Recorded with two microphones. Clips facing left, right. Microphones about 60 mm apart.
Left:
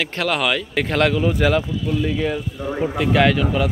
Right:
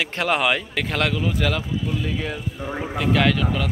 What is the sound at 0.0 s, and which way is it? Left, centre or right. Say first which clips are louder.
Speech: even; centre.